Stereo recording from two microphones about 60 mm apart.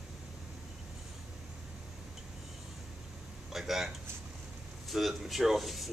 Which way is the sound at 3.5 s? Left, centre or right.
Centre.